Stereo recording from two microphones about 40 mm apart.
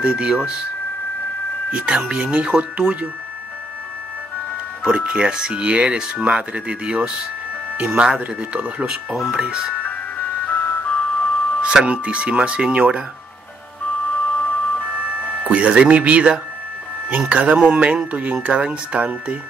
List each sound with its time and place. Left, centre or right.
0.0 s speech: right
1.7 s speech: right
4.8 s speech: right
10.4 s music: left
11.6 s speech: right
14.2 s music: left
15.4 s speech: right